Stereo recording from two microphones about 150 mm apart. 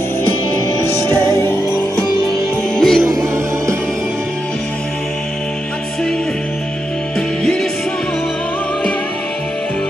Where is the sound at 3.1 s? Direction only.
20° right (ahead or behind).